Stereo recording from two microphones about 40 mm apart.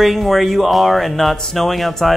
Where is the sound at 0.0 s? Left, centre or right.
Centre.